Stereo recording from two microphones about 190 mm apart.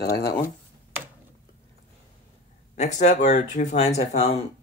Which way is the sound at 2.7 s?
35° left (ahead or behind).